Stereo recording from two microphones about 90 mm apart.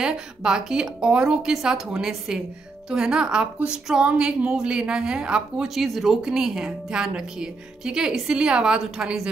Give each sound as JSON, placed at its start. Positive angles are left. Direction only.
{"t": 0.0, "sound": "a woman's voice", "side_deg": -10}